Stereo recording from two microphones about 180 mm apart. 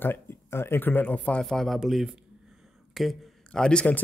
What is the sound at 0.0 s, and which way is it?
Speech, 10° left (ahead or behind).